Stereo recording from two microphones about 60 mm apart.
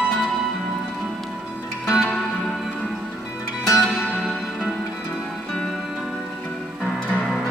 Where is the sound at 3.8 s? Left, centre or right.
Centre.